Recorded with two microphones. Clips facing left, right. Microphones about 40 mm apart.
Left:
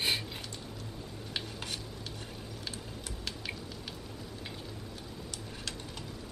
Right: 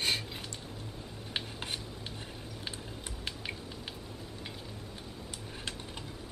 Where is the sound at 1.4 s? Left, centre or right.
Right.